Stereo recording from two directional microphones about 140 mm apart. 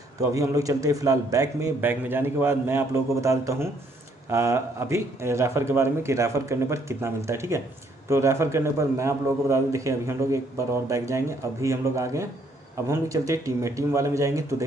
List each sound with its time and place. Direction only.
0.3 s a man's voice: 25° right (ahead or behind)